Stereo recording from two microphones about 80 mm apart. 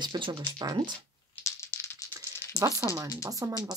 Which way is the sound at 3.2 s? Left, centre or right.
Right.